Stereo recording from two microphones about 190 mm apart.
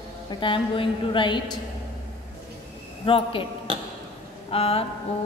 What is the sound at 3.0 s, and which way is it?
Speech, 30° left (ahead or behind).